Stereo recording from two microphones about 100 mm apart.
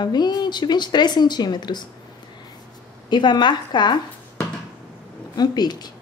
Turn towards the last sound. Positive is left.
turn(degrees=45)  # may be behind; listen again after turning